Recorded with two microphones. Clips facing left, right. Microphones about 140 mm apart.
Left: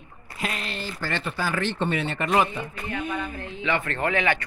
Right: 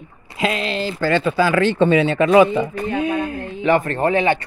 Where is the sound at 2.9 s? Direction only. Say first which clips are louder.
Right 8 dB; 90° right.